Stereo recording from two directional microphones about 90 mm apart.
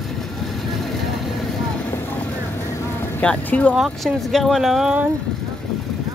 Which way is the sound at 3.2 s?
15° left (ahead or behind).